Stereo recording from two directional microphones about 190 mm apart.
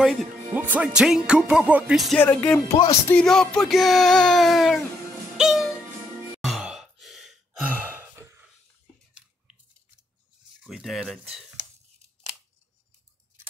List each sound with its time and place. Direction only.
0.0 s speech: centre (ahead or behind)
2.2 s speech: 10° left (ahead or behind)
6.4 s sigh: centre (ahead or behind)
10.6 s speech: centre (ahead or behind)